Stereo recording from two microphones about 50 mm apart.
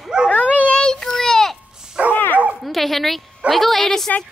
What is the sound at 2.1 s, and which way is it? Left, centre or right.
Dog, left.